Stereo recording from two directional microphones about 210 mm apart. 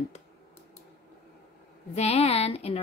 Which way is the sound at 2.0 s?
30° left (ahead or behind).